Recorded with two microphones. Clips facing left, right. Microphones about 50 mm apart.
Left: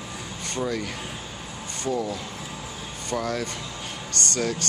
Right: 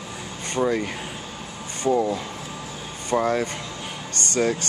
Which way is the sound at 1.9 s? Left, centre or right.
Right.